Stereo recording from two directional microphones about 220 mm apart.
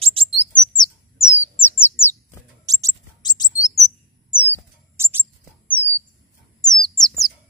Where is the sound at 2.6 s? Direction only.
15° right (ahead or behind).